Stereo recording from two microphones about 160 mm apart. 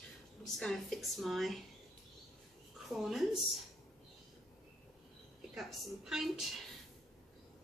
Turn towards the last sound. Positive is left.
turn(degrees=0)  # may be behind; listen again after turning